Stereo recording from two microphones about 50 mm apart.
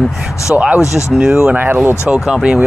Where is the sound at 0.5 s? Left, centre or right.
Centre.